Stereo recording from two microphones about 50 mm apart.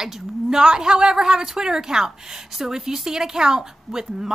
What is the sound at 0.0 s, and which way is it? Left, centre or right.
A woman's voice, centre.